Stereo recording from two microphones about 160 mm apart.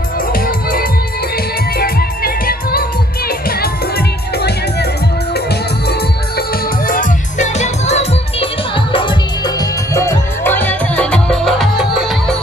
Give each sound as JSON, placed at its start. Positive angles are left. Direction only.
{"t": 0.3, "sound": "music", "side_deg": 65}
{"t": 4.4, "sound": "music", "side_deg": 90}
{"t": 6.9, "sound": "music", "side_deg": 50}